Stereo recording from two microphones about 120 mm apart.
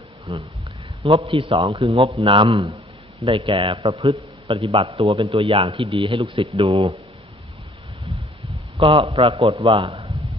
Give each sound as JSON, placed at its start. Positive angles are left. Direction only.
{"t": 0.3, "sound": "a man's voice", "side_deg": -45}
{"t": 8.7, "sound": "a man's voice", "side_deg": -45}